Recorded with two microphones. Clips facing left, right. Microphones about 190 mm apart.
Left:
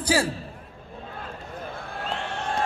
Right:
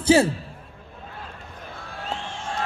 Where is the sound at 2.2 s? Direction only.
65° left (ahead or behind).